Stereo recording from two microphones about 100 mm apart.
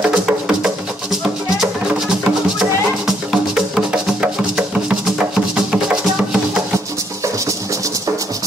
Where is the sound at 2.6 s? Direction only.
5° right (ahead or behind).